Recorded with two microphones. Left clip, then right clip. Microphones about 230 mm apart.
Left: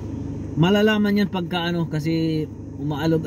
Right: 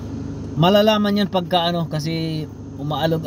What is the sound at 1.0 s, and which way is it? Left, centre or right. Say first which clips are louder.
Speech: right 3 dB; right.